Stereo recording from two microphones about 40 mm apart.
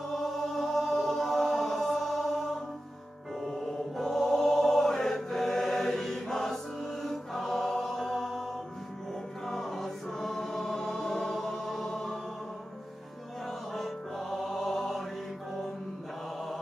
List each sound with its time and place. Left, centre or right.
0.1 s choir: centre
3.3 s music: centre
4.0 s chant: centre
9.5 s choir: centre
13.7 s music: centre